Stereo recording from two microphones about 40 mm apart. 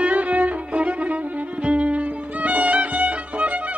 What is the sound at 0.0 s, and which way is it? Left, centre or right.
Violin, right.